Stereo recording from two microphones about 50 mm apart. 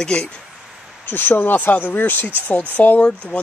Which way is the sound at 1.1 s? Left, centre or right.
Left.